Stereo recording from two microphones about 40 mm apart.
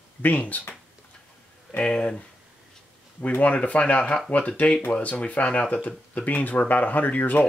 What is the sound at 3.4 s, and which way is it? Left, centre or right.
Speech, left.